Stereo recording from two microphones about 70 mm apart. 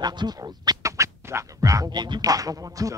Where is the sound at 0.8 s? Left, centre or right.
Right.